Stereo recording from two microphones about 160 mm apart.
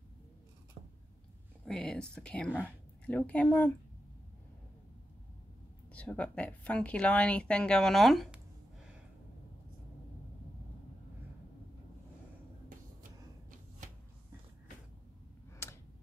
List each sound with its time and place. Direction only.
1.7 s speech: 5° left (ahead or behind)
5.9 s speech: 10° left (ahead or behind)
15.6 s a sound: 15° left (ahead or behind)